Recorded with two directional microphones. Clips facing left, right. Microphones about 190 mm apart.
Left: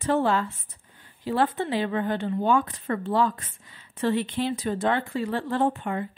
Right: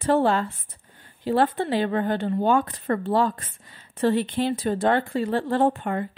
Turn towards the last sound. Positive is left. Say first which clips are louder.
# right 3 dB
turn(degrees=-45)  # may be behind; listen again after turning